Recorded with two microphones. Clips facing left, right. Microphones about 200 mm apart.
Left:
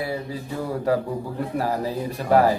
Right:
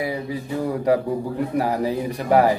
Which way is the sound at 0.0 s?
15° right (ahead or behind).